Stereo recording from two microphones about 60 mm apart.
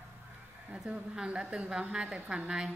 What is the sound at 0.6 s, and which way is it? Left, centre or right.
A woman's voice, centre.